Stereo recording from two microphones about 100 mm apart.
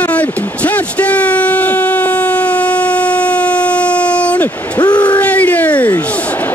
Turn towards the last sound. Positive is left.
turn(degrees=15)  # may be behind; listen again after turning